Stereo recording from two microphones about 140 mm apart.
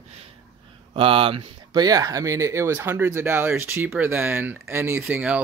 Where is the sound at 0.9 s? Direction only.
40° right (ahead or behind).